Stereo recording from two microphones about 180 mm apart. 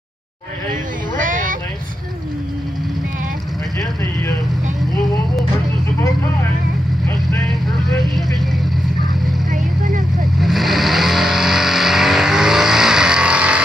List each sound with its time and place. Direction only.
0.7 s a sound: 45° right (ahead or behind)
9.5 s vehicle: 45° right (ahead or behind)
10.4 s vehicle: centre (ahead or behind)